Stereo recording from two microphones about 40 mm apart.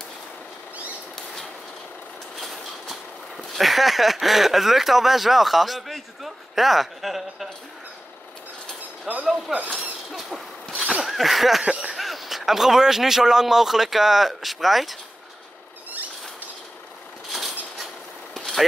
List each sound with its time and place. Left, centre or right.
1.1 s bird flight: centre
2.3 s a sound: centre
3.5 s speech: centre
9.1 s speech: right
9.6 s speech: centre
11.1 s speech: centre
11.6 s speech: right
11.9 s speech: centre
17.3 s a sound: centre
18.3 s vehicle: centre